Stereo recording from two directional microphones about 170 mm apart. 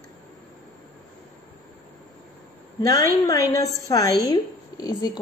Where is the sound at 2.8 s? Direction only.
20° left (ahead or behind).